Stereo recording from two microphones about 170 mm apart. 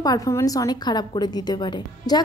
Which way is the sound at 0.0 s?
20° left (ahead or behind).